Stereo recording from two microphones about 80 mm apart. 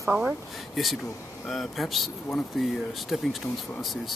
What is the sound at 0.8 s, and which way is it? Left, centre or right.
Speech, centre.